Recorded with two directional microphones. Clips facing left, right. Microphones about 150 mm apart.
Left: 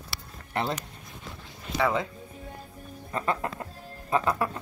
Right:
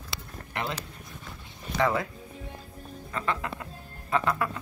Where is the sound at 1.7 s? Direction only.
10° left (ahead or behind).